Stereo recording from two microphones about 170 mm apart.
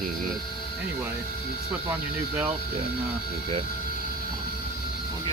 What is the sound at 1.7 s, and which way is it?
Speech, 10° right (ahead or behind).